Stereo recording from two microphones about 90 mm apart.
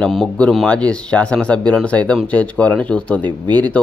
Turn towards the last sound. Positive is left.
turn(degrees=-60)  # may be behind; listen again after turning